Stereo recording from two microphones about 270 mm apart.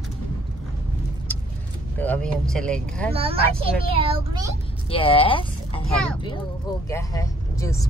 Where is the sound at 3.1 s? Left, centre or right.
Right.